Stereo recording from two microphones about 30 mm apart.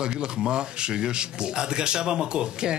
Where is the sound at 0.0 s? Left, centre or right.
Right.